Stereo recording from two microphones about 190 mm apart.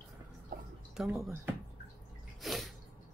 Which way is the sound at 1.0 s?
10° right (ahead or behind).